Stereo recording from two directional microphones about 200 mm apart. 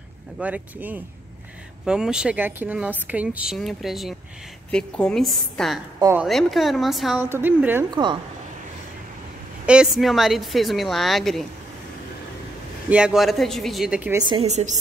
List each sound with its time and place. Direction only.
0.4 s speech: 10° right (ahead or behind)
5.9 s speech: 15° right (ahead or behind)
6.2 s speech: centre (ahead or behind)
7.9 s a woman's voice: 20° right (ahead or behind)
9.7 s speech: 5° right (ahead or behind)
12.9 s speech: 5° right (ahead or behind)
14.1 s a woman's voice: 20° right (ahead or behind)
14.5 s a woman's voice: 35° right (ahead or behind)